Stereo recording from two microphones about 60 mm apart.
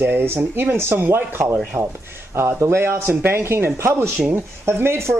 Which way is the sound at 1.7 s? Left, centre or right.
Right.